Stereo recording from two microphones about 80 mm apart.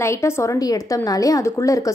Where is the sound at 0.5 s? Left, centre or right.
Left.